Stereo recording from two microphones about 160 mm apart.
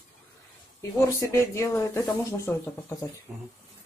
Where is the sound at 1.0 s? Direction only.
20° left (ahead or behind).